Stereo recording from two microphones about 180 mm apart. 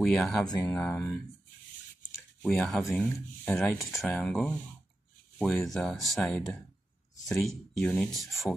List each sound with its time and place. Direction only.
0.0 s speech: centre (ahead or behind)
0.5 s speech: 20° left (ahead or behind)
0.7 s speech: 5° left (ahead or behind)
2.4 s speech: 5° left (ahead or behind)